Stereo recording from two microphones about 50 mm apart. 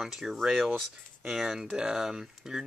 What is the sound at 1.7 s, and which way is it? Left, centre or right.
Speech, centre.